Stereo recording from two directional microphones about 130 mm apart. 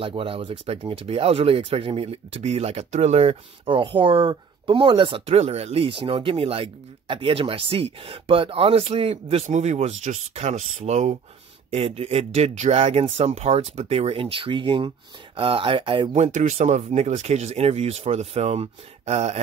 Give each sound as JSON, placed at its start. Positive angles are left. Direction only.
{"t": 0.0, "sound": "speech", "side_deg": -45}
{"t": 16.2, "sound": "speech", "side_deg": -60}